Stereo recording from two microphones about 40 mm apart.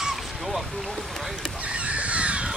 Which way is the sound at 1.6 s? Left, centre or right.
Right.